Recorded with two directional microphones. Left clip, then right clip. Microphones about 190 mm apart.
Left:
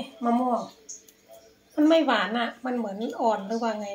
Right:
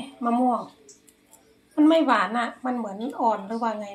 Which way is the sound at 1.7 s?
10° right (ahead or behind).